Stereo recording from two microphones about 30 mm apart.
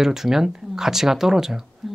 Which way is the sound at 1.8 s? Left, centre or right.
Centre.